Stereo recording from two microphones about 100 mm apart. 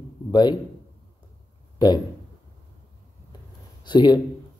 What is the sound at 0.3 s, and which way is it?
Speech, 45° left (ahead or behind).